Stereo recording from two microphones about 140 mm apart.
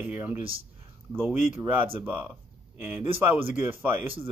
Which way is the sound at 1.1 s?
15° right (ahead or behind).